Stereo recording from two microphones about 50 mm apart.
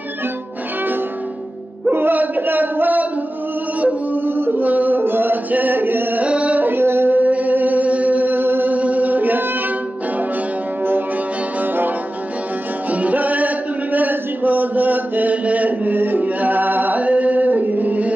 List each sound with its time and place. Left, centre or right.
1.9 s music: right
6.2 s music: right
6.7 s music: right
7.2 s music: right
8.7 s chant: right
11.6 s music: right
12.9 s music: right
13.9 s a sound: right